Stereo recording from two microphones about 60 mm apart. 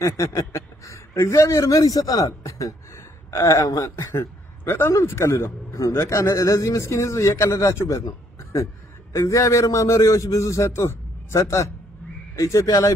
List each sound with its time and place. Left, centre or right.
0.0 s speech: left
3.3 s speech: left
4.1 s speech: left
9.1 s speech: left